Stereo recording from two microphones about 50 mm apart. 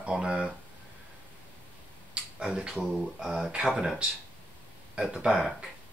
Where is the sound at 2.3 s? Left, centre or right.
Centre.